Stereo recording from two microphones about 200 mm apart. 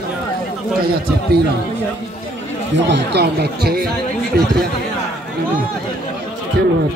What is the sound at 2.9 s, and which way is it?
Speech, 55° right (ahead or behind).